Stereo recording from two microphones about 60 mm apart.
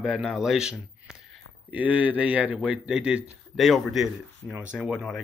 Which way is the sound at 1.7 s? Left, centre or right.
Right.